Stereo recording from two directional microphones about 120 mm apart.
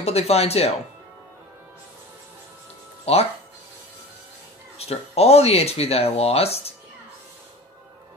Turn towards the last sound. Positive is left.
turn(degrees=55)  # may be behind; listen again after turning